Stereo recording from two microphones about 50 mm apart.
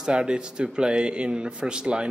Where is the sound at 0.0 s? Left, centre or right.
Centre.